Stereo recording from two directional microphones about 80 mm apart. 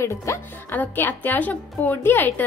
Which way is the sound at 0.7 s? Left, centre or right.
Left.